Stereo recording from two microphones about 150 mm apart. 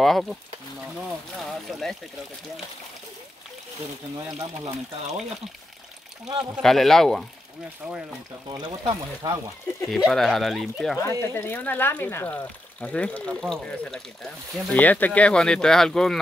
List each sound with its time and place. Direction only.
0.0 s speech: centre (ahead or behind)
4.3 s speech: 25° right (ahead or behind)
6.5 s speech: centre (ahead or behind)
8.5 s speech: 30° right (ahead or behind)
9.8 s speech: centre (ahead or behind)
11.0 s speech: 15° left (ahead or behind)